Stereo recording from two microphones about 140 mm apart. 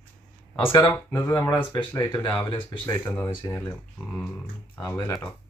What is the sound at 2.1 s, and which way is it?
Speech, 10° left (ahead or behind).